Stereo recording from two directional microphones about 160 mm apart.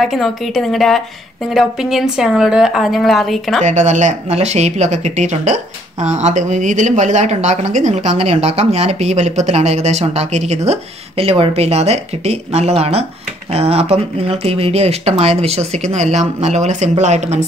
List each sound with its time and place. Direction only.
0.0 s a woman's voice: centre (ahead or behind)
3.6 s speech: 45° right (ahead or behind)